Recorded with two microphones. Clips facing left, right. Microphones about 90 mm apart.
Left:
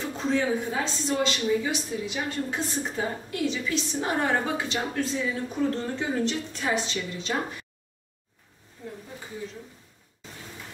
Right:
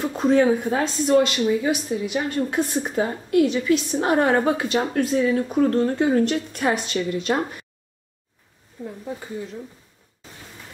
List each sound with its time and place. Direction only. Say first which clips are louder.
0.0 s a woman's voice: right 8 dB; 55° right (ahead or behind)